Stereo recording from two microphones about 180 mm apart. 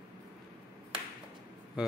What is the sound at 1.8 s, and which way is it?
Speech, 5° right (ahead or behind).